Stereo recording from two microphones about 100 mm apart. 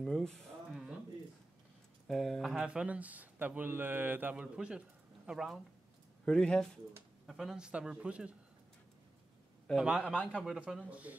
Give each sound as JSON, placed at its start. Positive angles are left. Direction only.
{"t": 0.0, "sound": "a sound", "side_deg": 5}
{"t": 2.0, "sound": "speech", "side_deg": 5}
{"t": 2.5, "sound": "speech", "side_deg": -10}
{"t": 6.2, "sound": "speech", "side_deg": 10}
{"t": 9.8, "sound": "speech", "side_deg": -5}
{"t": 10.0, "sound": "speech", "side_deg": 10}
{"t": 10.4, "sound": "speech", "side_deg": -5}